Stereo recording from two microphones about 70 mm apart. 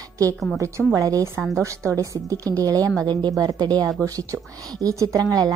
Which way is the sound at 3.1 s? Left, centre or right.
Right.